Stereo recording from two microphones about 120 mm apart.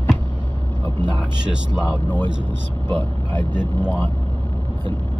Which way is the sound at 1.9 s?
15° left (ahead or behind).